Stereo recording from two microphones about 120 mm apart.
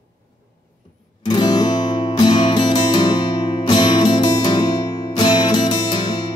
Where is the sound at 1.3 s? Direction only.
35° left (ahead or behind).